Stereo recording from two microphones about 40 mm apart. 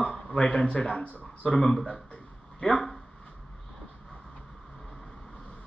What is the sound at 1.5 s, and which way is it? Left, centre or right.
Speech, centre.